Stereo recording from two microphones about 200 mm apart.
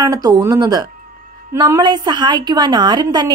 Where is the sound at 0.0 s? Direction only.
20° right (ahead or behind).